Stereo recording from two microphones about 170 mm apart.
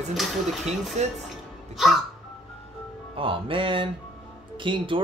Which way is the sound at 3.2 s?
30° right (ahead or behind).